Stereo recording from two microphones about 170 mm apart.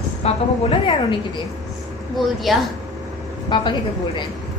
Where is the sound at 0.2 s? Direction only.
35° left (ahead or behind).